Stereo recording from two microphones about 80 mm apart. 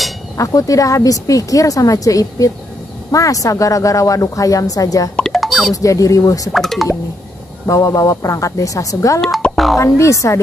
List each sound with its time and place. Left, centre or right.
0.4 s speech: left
5.1 s music: centre
5.8 s speech: left
6.5 s speech: centre
7.6 s speech: left
9.2 s music: centre
9.8 s speech: left